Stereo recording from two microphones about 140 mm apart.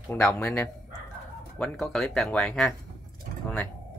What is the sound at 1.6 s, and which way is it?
Speech, 5° left (ahead or behind).